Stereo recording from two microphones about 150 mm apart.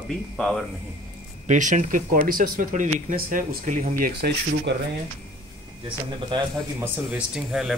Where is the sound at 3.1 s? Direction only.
70° right (ahead or behind).